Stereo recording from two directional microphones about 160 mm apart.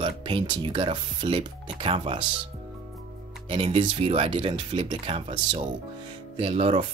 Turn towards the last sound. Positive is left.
turn(degrees=-35)  # may be behind; listen again after turning